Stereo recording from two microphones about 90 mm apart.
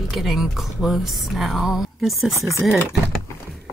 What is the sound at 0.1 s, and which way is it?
Speech, centre (ahead or behind).